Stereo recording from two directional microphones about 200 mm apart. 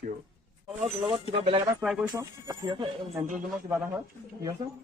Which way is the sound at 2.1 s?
15° right (ahead or behind).